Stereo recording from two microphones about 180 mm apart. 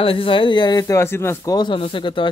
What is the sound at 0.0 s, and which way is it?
Speech, 30° left (ahead or behind).